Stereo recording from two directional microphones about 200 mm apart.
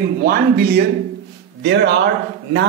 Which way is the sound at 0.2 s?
50° right (ahead or behind).